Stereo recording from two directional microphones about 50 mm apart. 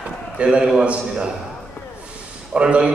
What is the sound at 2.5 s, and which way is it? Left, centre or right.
Speech, centre.